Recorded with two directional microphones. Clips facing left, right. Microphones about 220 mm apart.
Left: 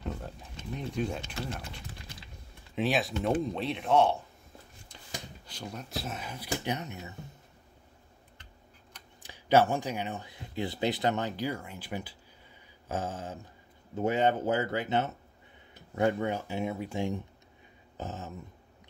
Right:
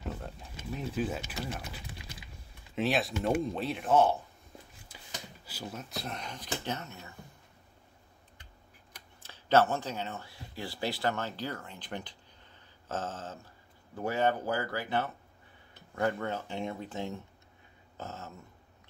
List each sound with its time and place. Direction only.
0.0 s speech: centre (ahead or behind); by 7.2 s 20° left (ahead or behind)
9.2 s speech: 15° left (ahead or behind)
17.9 s a sound: 15° left (ahead or behind)